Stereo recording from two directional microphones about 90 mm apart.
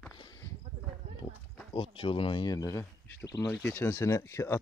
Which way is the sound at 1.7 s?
90° left.